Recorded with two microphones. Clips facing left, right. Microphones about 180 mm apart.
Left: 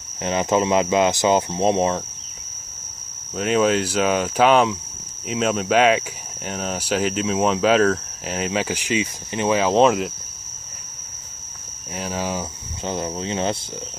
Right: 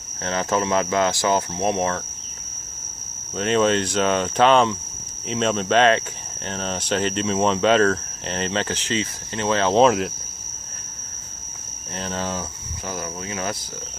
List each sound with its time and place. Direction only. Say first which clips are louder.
0.2 s speech: left 3 dB; 15° left (ahead or behind)
3.3 s cricket: left 1 dB; 5° left (ahead or behind)
5.3 s speech: left 1 dB; 5° left (ahead or behind)
11.9 s cricket: left 2 dB; 10° left (ahead or behind)
12.8 s speech: left 5 dB; 25° left (ahead or behind)